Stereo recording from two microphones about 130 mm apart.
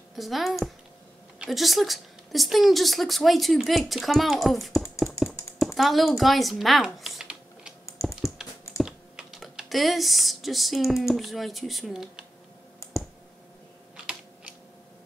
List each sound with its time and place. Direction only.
0.1 s a woman's voice: centre (ahead or behind)
7.8 s typing: 20° left (ahead or behind)
8.2 s typing: 5° right (ahead or behind)